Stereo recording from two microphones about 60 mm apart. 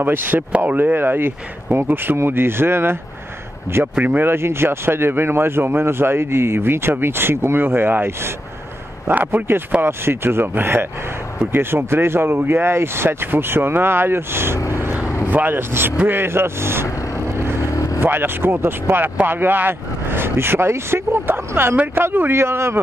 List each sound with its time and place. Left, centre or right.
0.0 s speech: right
3.9 s speech: right
4.2 s speech: right
14.7 s vehicle: right
15.2 s speech: right
17.7 s vehicle: left
18.0 s speech: right
22.3 s speech: right